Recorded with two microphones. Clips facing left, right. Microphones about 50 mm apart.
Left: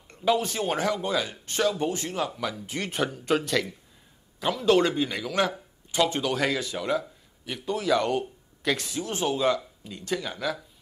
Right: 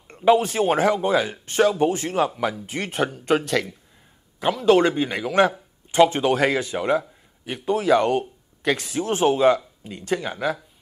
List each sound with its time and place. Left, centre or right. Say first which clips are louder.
0.1 s speech: right 7 dB; right
2.5 s speech: right 4 dB; centre
4.4 s speech: right 5 dB; centre
8.9 s speech: right 8 dB; right